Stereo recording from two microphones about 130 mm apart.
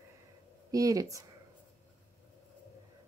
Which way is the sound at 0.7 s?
25° right (ahead or behind).